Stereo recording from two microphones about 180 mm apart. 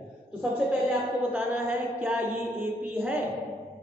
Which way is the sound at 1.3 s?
10° right (ahead or behind).